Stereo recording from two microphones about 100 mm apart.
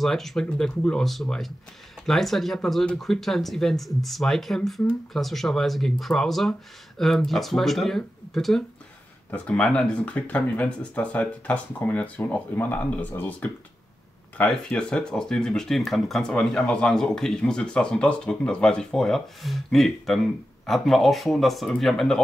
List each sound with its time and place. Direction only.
0.0 s speech: centre (ahead or behind)